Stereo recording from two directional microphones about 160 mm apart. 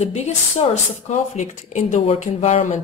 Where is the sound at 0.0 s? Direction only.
45° left (ahead or behind).